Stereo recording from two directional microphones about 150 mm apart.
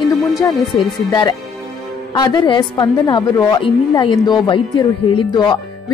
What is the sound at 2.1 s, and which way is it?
A woman's voice, 25° left (ahead or behind).